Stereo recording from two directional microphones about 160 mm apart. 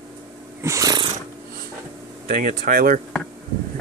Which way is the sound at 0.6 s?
20° right (ahead or behind).